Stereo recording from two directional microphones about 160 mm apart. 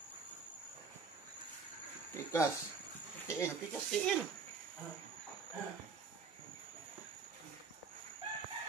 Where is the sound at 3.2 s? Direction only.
20° left (ahead or behind).